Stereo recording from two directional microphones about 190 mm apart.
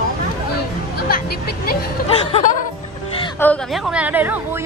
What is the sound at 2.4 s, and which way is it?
Music, 45° left (ahead or behind).